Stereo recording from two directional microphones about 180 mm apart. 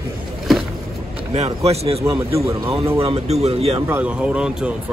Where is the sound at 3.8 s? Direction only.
10° right (ahead or behind).